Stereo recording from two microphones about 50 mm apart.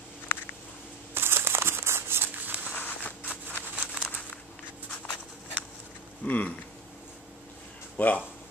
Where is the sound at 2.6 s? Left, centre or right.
Left.